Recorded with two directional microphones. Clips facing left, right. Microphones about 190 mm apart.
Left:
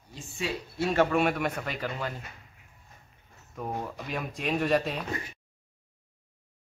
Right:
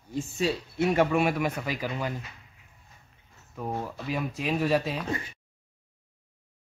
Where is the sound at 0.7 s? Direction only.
15° right (ahead or behind).